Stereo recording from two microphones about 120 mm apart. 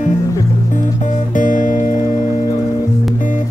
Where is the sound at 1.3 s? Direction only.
90° left.